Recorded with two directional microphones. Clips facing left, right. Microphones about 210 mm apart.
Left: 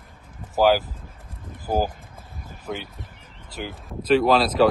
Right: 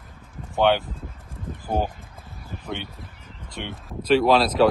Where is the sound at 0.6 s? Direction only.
Centre (ahead or behind).